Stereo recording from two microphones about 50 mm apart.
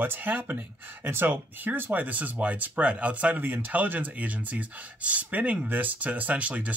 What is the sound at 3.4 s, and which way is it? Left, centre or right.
Speech, right.